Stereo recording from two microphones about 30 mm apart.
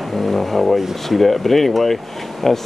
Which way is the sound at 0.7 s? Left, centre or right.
Centre.